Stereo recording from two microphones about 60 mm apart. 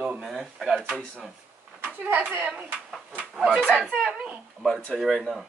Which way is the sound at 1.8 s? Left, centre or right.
Right.